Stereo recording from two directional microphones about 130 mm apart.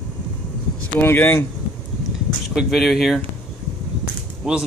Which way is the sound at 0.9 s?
15° left (ahead or behind).